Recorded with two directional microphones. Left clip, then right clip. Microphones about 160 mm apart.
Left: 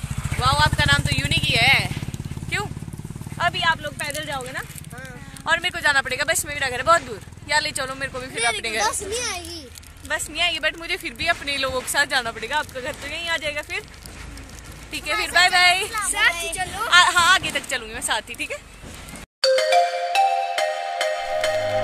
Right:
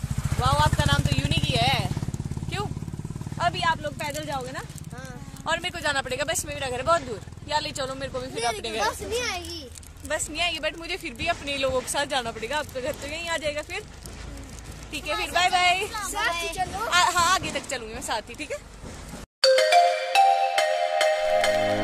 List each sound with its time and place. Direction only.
0.4 s vehicle: 5° right (ahead or behind)
3.3 s horse: 5° right (ahead or behind)
5.4 s speech: centre (ahead or behind)
8.8 s speech: 75° left (ahead or behind)
10.0 s speech: centre (ahead or behind)
14.9 s speech: 5° left (ahead or behind)
15.9 s a woman's voice: 15° left (ahead or behind)
16.2 s speech: 35° right (ahead or behind)
16.9 s speech: centre (ahead or behind)
19.4 s ringtone: centre (ahead or behind)